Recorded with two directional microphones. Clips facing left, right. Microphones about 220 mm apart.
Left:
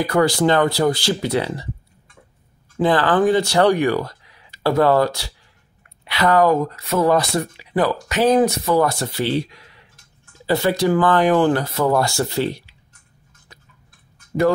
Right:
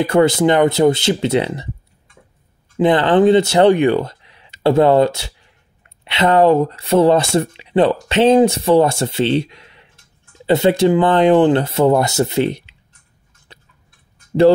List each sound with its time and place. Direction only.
0.0 s speech: 25° right (ahead or behind)
2.8 s speech: 20° right (ahead or behind)
13.5 s tick-tock: 30° right (ahead or behind)